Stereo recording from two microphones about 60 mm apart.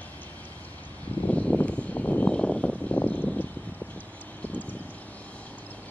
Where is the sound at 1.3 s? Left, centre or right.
Left.